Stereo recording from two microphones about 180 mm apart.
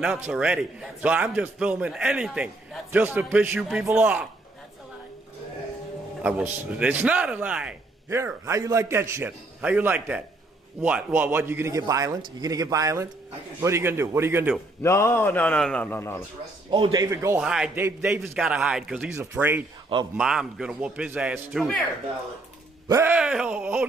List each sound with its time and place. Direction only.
0.0 s a man's voice: 5° right (ahead or behind)
6.2 s a man's voice: 5° right (ahead or behind)
14.8 s a man's voice: 15° left (ahead or behind)
16.7 s a man's voice: 25° right (ahead or behind)
17.4 s a man's voice: 5° right (ahead or behind)
22.8 s a man's voice: 15° right (ahead or behind)